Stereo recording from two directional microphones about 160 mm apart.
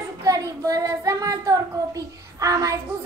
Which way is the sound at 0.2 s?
20° right (ahead or behind).